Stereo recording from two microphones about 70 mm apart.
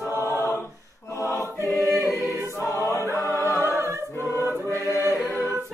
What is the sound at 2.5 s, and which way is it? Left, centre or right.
Choir, left.